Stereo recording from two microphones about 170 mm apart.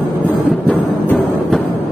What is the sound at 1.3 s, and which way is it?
Music, 5° left (ahead or behind).